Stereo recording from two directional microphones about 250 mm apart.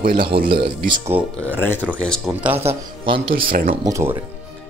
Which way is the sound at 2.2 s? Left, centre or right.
Centre.